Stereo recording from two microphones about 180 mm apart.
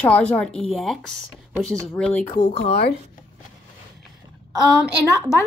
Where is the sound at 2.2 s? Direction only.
35° left (ahead or behind).